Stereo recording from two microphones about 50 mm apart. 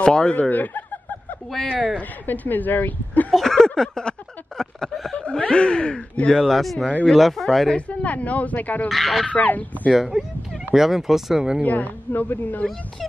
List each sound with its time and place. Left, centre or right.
0.0 s a sound: centre
0.4 s speech: left
2.0 s speech: left
3.3 s a sound: centre
5.1 s speech: centre
6.3 s speech: centre
7.7 s speech: left
8.8 s speech: centre
9.2 s speech: left
9.9 s speech: centre
11.6 s speech: left